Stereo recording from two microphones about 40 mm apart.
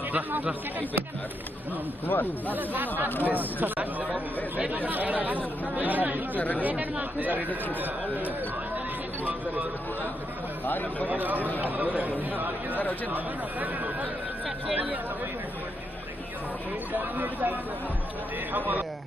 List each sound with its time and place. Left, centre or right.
2.0 s speech: left
2.5 s speech: right
4.1 s speech: right
6.3 s speech: left
6.6 s speech: right
10.6 s speech: left
11.1 s speech: right
16.9 s speech: right